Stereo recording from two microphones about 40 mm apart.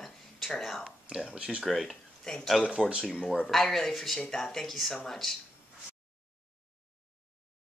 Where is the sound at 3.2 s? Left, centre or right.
Centre.